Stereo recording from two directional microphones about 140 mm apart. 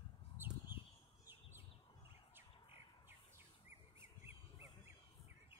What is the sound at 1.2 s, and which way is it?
Bird, 15° right (ahead or behind).